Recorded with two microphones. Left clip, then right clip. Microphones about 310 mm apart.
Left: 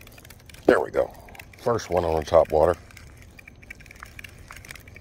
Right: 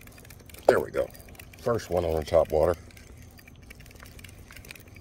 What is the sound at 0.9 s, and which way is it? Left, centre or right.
Speech, centre.